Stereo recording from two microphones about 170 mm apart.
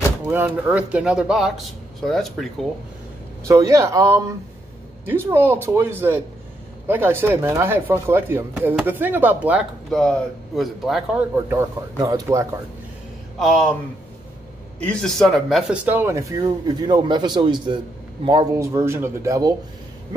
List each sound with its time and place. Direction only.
0.2 s speech: 10° right (ahead or behind)
3.4 s speech: 20° right (ahead or behind)
9.8 s speech: 5° left (ahead or behind)
11.5 s speech: 20° right (ahead or behind)
13.4 s speech: 5° left (ahead or behind)
14.9 s speech: 5° left (ahead or behind); by 19.5 s 20° right (ahead or behind)